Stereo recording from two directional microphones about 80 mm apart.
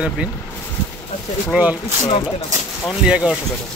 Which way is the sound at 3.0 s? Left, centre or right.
Centre.